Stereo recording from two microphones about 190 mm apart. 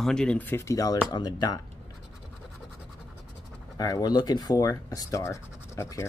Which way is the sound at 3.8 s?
20° left (ahead or behind).